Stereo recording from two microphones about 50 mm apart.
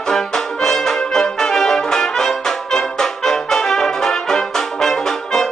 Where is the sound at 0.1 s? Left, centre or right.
Centre.